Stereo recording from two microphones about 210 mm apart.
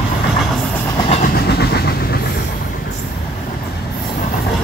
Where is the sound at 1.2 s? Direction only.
50° left (ahead or behind).